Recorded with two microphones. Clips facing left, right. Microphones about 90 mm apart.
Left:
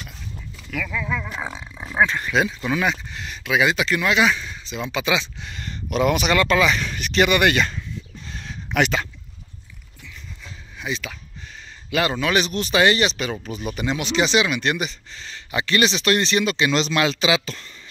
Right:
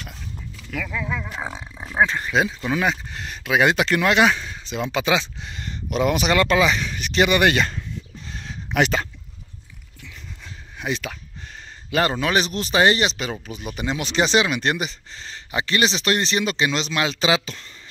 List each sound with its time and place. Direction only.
0.8 s speech: 20° right (ahead or behind); by 5.0 s 50° right (ahead or behind)
5.0 s speech: 35° right (ahead or behind)
5.5 s speech: 25° right (ahead or behind)
6.8 s speech: 10° right (ahead or behind)
7.1 s speech: 25° right (ahead or behind)
8.3 s a sound: 25° right (ahead or behind)
11.9 s speech: 35° right (ahead or behind)
14.0 s speech: 35° right (ahead or behind)
16.7 s speech: 15° right (ahead or behind)